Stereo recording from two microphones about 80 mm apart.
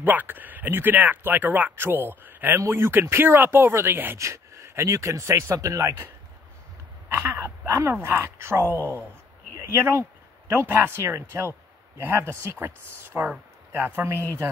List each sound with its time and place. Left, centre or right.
0.0 s speech: right
4.2 s speech: right
7.1 s speech: right
8.6 s speech: left
9.5 s speech: right